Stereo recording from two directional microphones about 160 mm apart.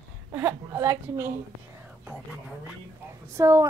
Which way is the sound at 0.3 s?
15° right (ahead or behind).